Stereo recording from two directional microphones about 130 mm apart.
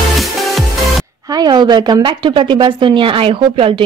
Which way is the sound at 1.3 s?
35° right (ahead or behind).